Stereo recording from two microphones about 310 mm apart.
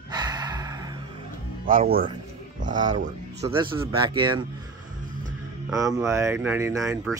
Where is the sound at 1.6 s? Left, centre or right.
Right.